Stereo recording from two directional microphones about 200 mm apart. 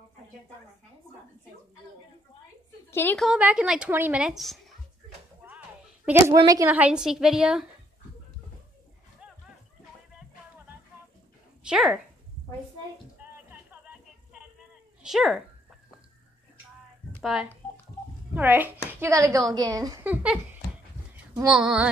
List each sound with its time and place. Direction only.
2.9 s a woman's voice: 10° left (ahead or behind)
3.3 s a woman's voice: 5° right (ahead or behind)
6.0 s a woman's voice: 15° right (ahead or behind)
9.2 s a sound: 5° right (ahead or behind)
11.6 s speech: 5° right (ahead or behind)
15.0 s a woman's voice: centre (ahead or behind)
17.2 s a woman's voice: 5° right (ahead or behind)